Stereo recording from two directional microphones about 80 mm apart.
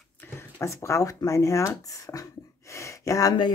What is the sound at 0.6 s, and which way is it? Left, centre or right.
Speech, left.